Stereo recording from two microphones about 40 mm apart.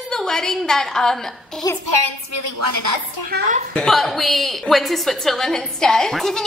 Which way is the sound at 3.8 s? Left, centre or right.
Centre.